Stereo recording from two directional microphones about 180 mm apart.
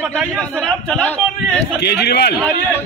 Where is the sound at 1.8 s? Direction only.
65° left (ahead or behind).